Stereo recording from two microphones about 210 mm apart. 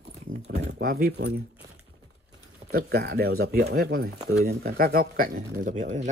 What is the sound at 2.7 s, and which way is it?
Speech, 45° right (ahead or behind).